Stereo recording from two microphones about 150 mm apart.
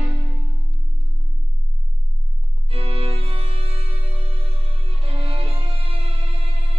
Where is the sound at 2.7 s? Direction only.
40° right (ahead or behind).